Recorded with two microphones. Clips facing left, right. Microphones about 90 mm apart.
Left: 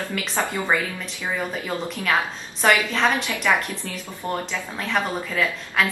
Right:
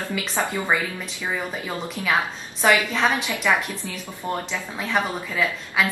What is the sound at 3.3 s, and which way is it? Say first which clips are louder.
A woman's voice: even; 15° right (ahead or behind).